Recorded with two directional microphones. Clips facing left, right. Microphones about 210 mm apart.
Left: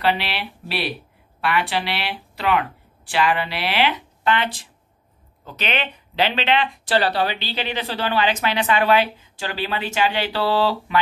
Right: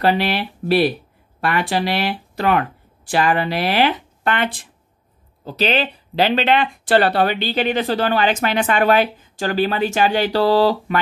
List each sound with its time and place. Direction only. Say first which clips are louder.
0.0 s speech: right 5 dB; 45° right (ahead or behind)
5.4 s speech: right 7 dB; 35° right (ahead or behind)